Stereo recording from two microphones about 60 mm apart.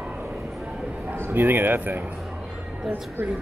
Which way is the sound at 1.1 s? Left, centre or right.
Right.